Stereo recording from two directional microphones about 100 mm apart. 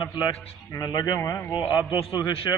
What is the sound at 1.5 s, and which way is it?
Speech, 50° left (ahead or behind).